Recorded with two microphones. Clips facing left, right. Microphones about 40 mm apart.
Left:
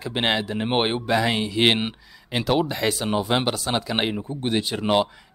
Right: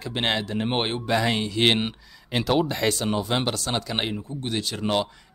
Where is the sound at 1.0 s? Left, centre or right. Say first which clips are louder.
Left 2 dB; centre; by 5.0 s left.